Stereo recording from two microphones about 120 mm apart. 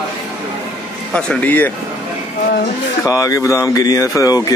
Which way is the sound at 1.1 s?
10° left (ahead or behind).